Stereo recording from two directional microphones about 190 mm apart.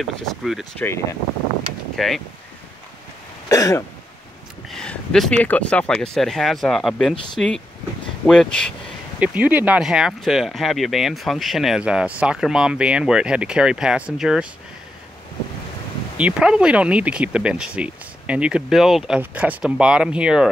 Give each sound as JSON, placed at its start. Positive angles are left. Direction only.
{"t": 0.0, "sound": "speech", "side_deg": 0}
{"t": 2.0, "sound": "speech", "side_deg": 0}
{"t": 3.4, "sound": "throat clearing", "side_deg": 20}
{"t": 4.6, "sound": "speech", "side_deg": 0}
{"t": 9.2, "sound": "speech", "side_deg": -5}
{"t": 16.2, "sound": "speech", "side_deg": -5}